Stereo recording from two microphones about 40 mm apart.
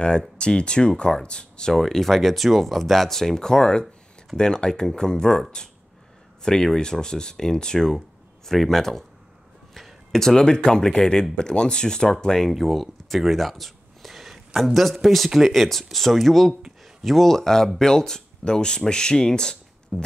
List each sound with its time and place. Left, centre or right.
0.4 s speech: left
1.7 s speech: centre
6.4 s speech: centre
12.4 s a sound: centre
14.6 s speech: centre
19.9 s music: centre